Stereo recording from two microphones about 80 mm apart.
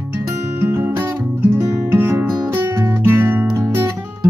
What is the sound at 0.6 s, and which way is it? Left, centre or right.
Music, right.